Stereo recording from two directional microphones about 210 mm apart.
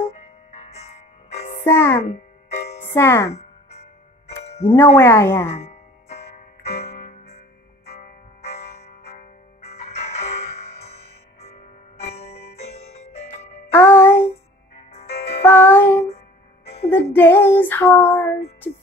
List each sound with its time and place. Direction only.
0.1 s music: 30° left (ahead or behind)
1.6 s a child's voice: 10° left (ahead or behind)
2.5 s music: 30° left (ahead or behind)
2.8 s speech: 10° left (ahead or behind)
3.3 s music: 30° left (ahead or behind)
4.4 s wind chime: 30° left (ahead or behind)
4.6 s speech: 10° left (ahead or behind)
5.6 s music: 30° left (ahead or behind)
13.7 s music: 10° left (ahead or behind)
14.8 s music: 30° left (ahead or behind)
15.4 s music: 10° left (ahead or behind)
16.6 s music: 30° left (ahead or behind)
16.9 s female singing: 10° left (ahead or behind)